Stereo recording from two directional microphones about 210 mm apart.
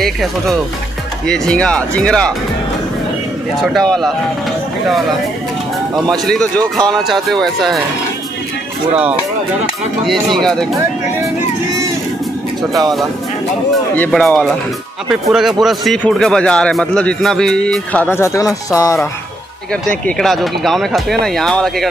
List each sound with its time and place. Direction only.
0.0 s speech: centre (ahead or behind)
3.5 s speech: centre (ahead or behind)
6.0 s speech: 5° left (ahead or behind)
10.0 s speech: centre (ahead or behind)
13.9 s speech: 5° left (ahead or behind)
20.1 s speech: centre (ahead or behind)